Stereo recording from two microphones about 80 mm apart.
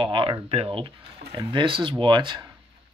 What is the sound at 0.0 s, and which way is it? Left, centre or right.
Speech, right.